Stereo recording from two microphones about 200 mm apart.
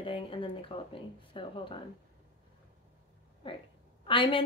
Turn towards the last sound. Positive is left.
turn(degrees=25)  # may be behind; listen again after turning